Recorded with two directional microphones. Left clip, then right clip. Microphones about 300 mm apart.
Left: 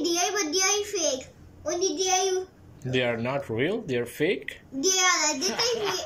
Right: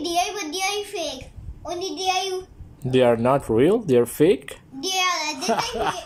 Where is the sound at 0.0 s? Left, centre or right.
Centre.